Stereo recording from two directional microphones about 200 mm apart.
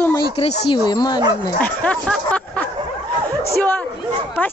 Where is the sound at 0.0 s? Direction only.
10° left (ahead or behind).